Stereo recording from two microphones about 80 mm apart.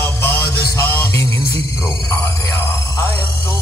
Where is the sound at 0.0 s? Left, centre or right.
Left.